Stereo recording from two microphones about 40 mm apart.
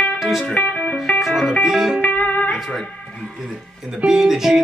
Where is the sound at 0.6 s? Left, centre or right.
Left.